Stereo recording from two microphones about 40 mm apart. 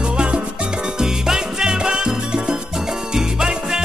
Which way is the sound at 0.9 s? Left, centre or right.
Centre.